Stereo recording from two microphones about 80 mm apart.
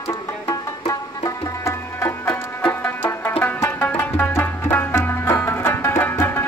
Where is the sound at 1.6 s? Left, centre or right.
Left.